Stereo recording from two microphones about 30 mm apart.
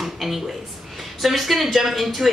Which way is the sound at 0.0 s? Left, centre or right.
Centre.